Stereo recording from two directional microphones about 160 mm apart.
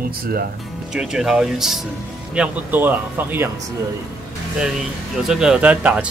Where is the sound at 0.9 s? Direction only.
5° right (ahead or behind).